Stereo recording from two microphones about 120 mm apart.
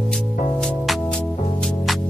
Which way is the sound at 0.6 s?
5° left (ahead or behind).